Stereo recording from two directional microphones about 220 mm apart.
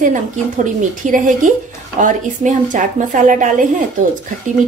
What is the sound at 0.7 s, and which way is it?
Speech, 35° right (ahead or behind).